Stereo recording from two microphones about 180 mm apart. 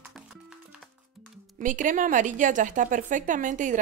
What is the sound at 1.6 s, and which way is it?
A woman's voice, 45° right (ahead or behind).